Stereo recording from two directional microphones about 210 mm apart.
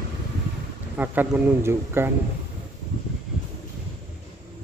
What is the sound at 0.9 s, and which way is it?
Speech, 10° right (ahead or behind).